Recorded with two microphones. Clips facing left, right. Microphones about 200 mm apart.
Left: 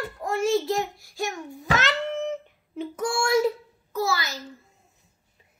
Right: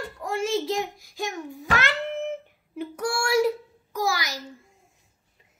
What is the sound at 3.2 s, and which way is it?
A child's voice, 10° right (ahead or behind).